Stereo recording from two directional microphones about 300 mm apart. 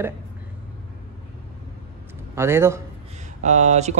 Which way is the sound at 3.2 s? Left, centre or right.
Right.